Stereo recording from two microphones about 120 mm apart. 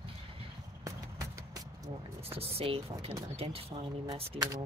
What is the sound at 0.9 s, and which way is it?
Vehicle, 30° right (ahead or behind).